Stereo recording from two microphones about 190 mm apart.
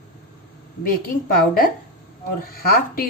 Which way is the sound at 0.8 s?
50° left (ahead or behind).